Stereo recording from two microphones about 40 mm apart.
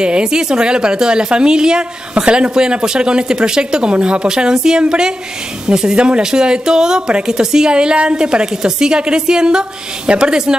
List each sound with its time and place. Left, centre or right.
0.0 s a woman's voice: centre